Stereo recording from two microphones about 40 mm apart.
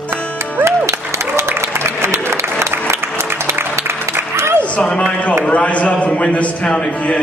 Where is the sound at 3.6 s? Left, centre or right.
Right.